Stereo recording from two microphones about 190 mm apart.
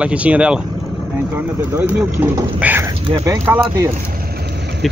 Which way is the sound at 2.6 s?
10° right (ahead or behind).